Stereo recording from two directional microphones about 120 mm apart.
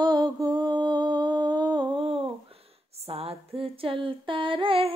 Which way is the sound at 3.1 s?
55° right (ahead or behind).